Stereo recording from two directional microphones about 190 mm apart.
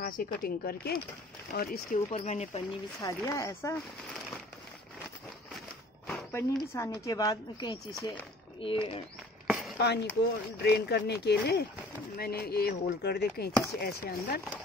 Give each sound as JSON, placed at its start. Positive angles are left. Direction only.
{"t": 0.0, "sound": "speech", "side_deg": 50}
{"t": 2.0, "sound": "speech", "side_deg": 35}
{"t": 3.0, "sound": "speech", "side_deg": 15}
{"t": 6.3, "sound": "speech", "side_deg": 15}
{"t": 9.5, "sound": "a sound", "side_deg": 0}
{"t": 9.8, "sound": "chop", "side_deg": 60}